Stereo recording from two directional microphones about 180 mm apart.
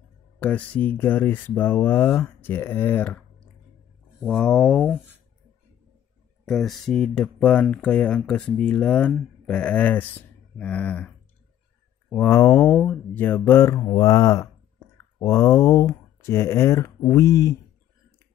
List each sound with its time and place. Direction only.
0.4 s speech: 10° left (ahead or behind)
4.2 s speech: 5° left (ahead or behind)
6.4 s speech: centre (ahead or behind)
12.1 s speech: 10° left (ahead or behind)